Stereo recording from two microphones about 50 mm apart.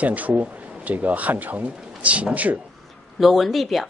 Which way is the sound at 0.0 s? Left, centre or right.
Right.